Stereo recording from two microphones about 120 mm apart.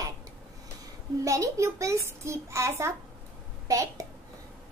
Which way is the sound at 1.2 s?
25° right (ahead or behind).